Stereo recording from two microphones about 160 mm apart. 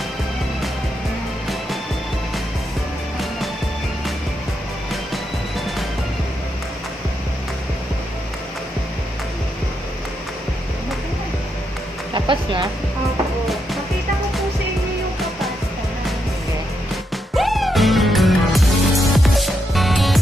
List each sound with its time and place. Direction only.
12.1 s music: 30° right (ahead or behind)
17.4 s music: centre (ahead or behind)